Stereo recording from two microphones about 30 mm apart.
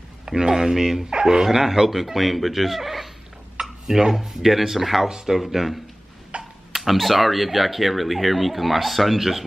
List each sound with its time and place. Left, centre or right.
0.4 s speech: centre
6.3 s a sound: right
6.7 s speech: centre